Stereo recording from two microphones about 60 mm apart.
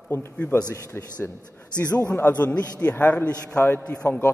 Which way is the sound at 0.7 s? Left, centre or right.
Left.